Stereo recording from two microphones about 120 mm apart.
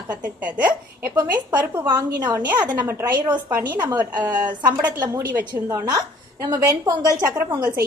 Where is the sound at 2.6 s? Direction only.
35° right (ahead or behind).